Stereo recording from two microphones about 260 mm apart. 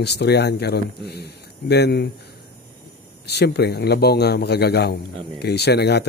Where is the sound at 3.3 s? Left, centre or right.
Left.